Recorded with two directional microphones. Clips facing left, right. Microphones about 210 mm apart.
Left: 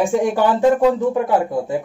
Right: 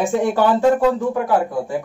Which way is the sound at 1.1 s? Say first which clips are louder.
Left 1 dB; 25° left (ahead or behind).